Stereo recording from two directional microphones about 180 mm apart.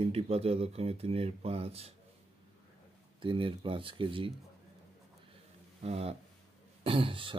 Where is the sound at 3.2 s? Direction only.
30° right (ahead or behind).